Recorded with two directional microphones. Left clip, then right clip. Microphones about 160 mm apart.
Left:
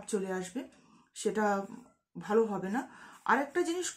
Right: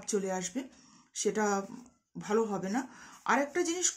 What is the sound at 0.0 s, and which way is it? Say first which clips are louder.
Speech: right 2 dB; 15° right (ahead or behind).